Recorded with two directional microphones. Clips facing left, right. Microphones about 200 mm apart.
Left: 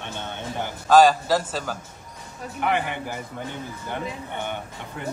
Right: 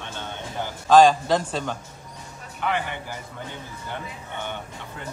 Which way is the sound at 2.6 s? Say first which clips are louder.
Left 2 dB; 15° left (ahead or behind).